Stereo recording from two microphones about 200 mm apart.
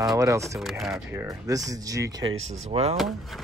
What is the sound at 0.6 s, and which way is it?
Speech, centre (ahead or behind).